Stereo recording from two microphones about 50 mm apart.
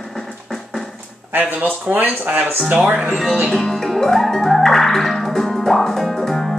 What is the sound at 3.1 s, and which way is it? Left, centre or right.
Speech, centre.